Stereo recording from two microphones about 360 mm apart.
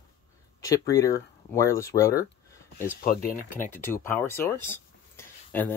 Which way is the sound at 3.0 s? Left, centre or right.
Left.